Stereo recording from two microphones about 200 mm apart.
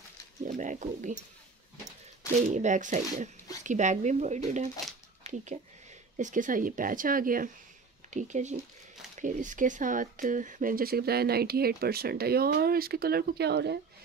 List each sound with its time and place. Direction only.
0.5 s speech: 40° right (ahead or behind)
2.5 s speech: 40° right (ahead or behind); by 13.7 s 55° right (ahead or behind)